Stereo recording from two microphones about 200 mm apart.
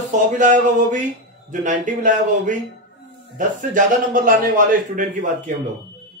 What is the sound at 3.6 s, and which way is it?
A man's voice, 40° right (ahead or behind).